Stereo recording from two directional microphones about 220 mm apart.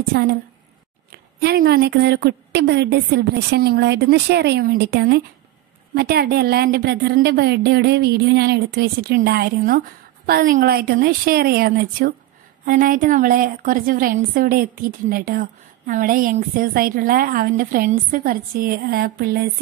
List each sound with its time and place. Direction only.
0.1 s a woman's voice: 45° right (ahead or behind)
1.4 s a woman's voice: 45° right (ahead or behind)